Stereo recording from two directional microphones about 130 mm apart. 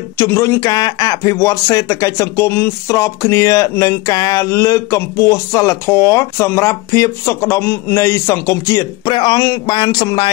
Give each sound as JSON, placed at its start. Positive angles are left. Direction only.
{"t": 0.2, "sound": "speech", "side_deg": 20}